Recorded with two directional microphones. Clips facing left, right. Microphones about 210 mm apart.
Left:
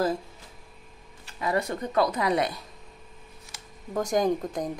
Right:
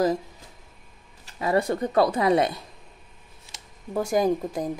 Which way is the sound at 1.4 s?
30° right (ahead or behind).